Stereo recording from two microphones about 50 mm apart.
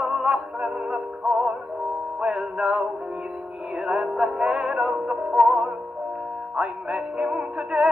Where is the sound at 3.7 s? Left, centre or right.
Centre.